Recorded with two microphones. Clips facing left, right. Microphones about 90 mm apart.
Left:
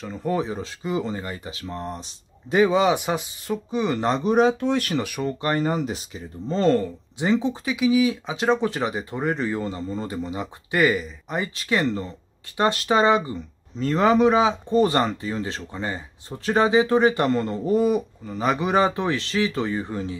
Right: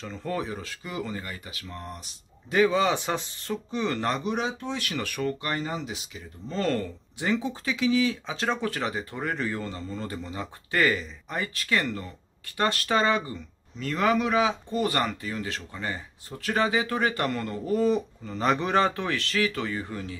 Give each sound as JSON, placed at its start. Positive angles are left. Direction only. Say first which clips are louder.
{"t": 0.0, "sound": "a man's voice", "louder": "left 6 dB", "side_deg": 15}
{"t": 4.2, "sound": "speech", "louder": "left 10 dB", "side_deg": 45}
{"t": 4.9, "sound": "speech", "louder": "left 4 dB", "side_deg": 15}
{"t": 5.4, "sound": "speech", "louder": "left 8 dB", "side_deg": 45}
{"t": 7.7, "sound": "a man's voice", "louder": "left 4 dB", "side_deg": 10}
{"t": 13.7, "sound": "a man's voice", "louder": "left 6 dB", "side_deg": 30}